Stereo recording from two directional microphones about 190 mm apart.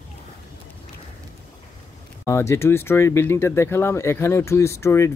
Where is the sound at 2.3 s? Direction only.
15° left (ahead or behind).